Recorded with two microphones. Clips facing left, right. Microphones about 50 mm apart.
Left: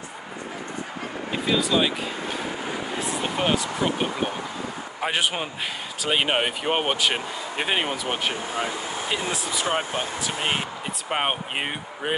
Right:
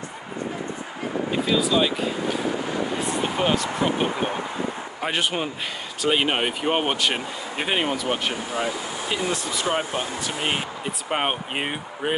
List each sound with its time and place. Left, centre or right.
1.3 s speech: centre